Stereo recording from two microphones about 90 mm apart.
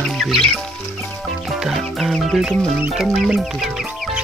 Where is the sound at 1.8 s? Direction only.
Centre (ahead or behind).